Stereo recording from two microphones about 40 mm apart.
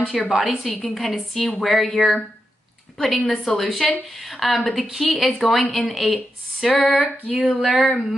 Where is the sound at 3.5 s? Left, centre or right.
Centre.